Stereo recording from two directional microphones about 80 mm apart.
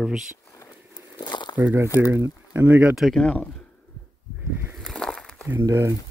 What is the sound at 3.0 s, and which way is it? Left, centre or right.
Speech, centre.